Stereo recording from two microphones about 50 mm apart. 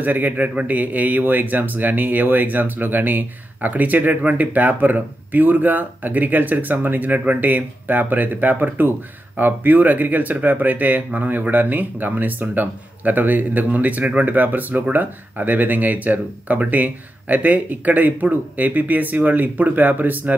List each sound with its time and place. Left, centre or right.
0.0 s speech: right